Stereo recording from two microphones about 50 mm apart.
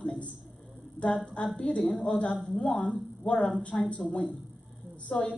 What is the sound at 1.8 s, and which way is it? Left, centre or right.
A woman's voice, centre.